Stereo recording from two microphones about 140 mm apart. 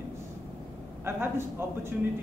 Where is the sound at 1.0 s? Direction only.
15° right (ahead or behind).